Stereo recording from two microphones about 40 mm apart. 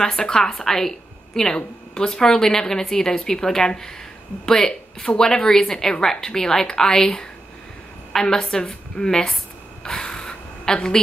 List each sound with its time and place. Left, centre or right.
0.0 s a woman's voice: centre
8.1 s a woman's voice: centre
9.9 s a sound: centre